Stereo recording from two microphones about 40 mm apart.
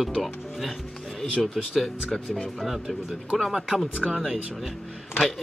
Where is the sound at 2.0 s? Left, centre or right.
Left.